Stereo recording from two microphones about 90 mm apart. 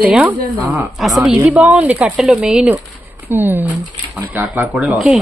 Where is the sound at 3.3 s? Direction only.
25° right (ahead or behind).